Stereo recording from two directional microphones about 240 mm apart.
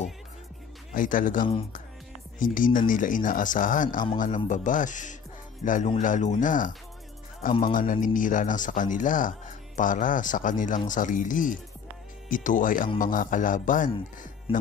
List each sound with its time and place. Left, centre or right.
0.9 s speech: left